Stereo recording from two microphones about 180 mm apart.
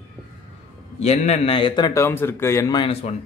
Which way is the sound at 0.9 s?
35° left (ahead or behind).